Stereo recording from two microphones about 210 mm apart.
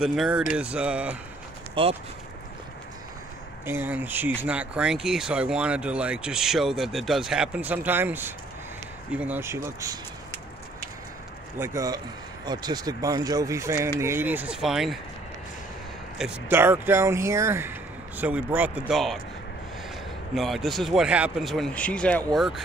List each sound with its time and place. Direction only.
0.0 s speech: centre (ahead or behind)
1.8 s speech: 25° right (ahead or behind)
3.6 s speech: 10° right (ahead or behind)
11.5 s speech: 10° right (ahead or behind)
16.2 s speech: 10° right (ahead or behind)
20.3 s speech: centre (ahead or behind)